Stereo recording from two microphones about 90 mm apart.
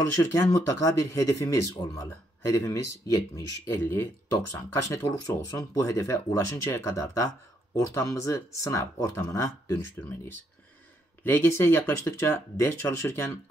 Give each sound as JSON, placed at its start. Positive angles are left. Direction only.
{"t": 0.2, "sound": "speech", "side_deg": 30}
{"t": 2.0, "sound": "speech", "side_deg": 30}
{"t": 3.6, "sound": "speech", "side_deg": 25}